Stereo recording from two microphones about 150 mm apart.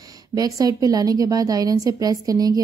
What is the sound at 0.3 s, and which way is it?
A woman's voice, 25° right (ahead or behind).